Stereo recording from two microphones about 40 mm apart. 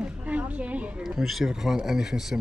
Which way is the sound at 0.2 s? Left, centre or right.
Right.